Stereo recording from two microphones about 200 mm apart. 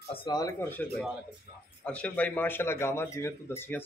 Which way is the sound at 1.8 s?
5° left (ahead or behind).